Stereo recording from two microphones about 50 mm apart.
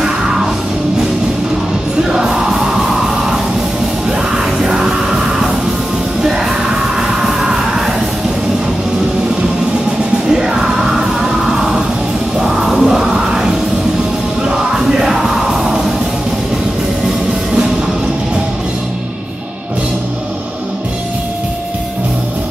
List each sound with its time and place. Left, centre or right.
2.0 s music: centre
4.6 s music: centre
7.0 s music: centre
10.2 s music: centre